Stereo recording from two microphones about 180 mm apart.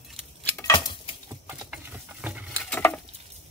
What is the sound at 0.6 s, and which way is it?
Dishes, 20° left (ahead or behind).